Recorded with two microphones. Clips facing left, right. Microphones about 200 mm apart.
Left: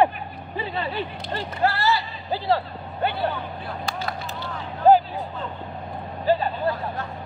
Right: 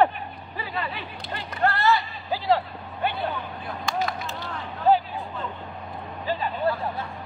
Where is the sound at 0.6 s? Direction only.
30° left (ahead or behind).